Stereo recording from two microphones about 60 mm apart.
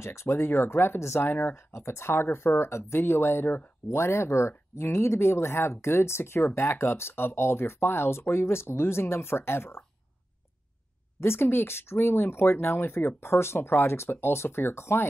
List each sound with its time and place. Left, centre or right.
0.0 s speech: left
1.3 s speech: left
1.7 s speech: left
11.1 s speech: left